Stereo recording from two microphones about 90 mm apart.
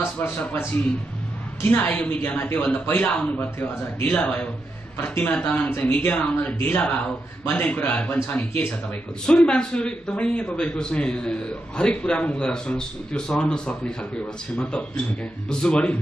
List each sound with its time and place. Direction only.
0.0 s a man's voice: 25° left (ahead or behind)